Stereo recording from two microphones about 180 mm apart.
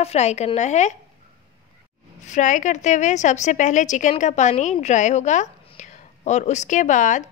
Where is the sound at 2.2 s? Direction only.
45° left (ahead or behind).